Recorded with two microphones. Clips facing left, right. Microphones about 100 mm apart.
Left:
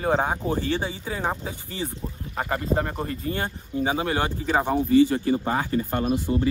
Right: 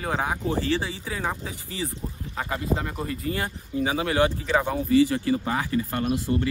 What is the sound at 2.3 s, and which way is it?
Speech, 40° left (ahead or behind).